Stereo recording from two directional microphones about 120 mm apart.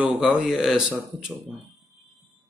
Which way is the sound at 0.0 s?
10° right (ahead or behind).